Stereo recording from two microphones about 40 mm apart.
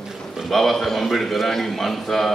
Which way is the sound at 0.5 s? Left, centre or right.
Centre.